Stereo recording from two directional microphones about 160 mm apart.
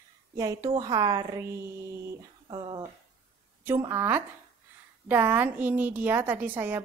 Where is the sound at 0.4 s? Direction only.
20° right (ahead or behind).